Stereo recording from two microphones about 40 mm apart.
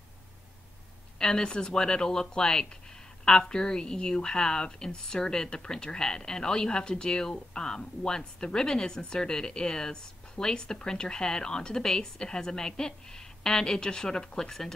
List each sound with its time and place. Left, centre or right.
1.2 s a woman's voice: centre